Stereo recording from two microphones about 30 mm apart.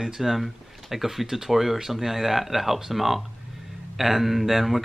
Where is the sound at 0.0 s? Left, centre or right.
Centre.